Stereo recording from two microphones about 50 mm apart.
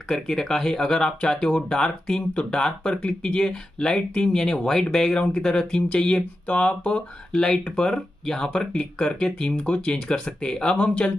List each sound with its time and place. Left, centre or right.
0.1 s speech: centre